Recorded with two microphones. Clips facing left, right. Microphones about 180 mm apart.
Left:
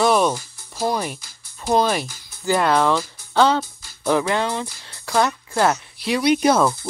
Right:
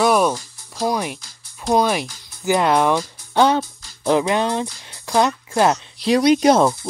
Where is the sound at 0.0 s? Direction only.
Centre (ahead or behind).